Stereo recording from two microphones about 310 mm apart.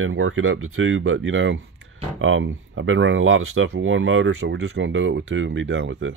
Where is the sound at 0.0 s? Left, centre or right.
Right.